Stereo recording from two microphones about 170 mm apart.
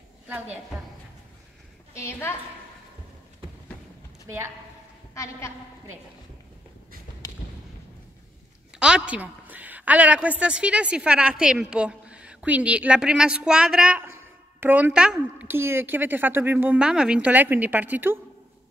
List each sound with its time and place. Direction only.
2.0 s a woman's voice: 15° left (ahead or behind)
5.1 s a woman's voice: 15° left (ahead or behind)
8.7 s a woman's voice: 5° right (ahead or behind)